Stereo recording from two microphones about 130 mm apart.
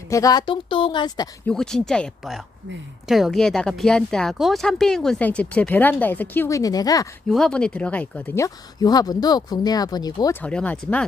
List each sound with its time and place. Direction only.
0.1 s speech: 30° left (ahead or behind)
1.5 s speech: 5° left (ahead or behind); by 7.1 s 30° left (ahead or behind)
7.2 s speech: 5° left (ahead or behind)
8.4 s speech: 30° left (ahead or behind)
10.4 s speech: 10° left (ahead or behind)